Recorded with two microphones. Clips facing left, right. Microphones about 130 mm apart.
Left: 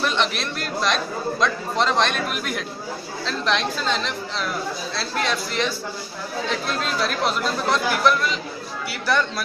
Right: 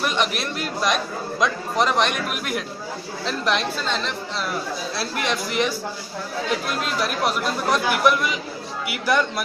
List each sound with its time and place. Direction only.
0.0 s a man's voice: 10° right (ahead or behind)
4.9 s a man's voice: 15° right (ahead or behind)